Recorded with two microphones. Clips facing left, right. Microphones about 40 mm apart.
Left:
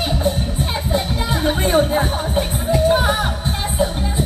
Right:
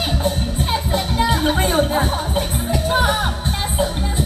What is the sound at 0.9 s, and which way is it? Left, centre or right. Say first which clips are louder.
Music: right 2 dB; right.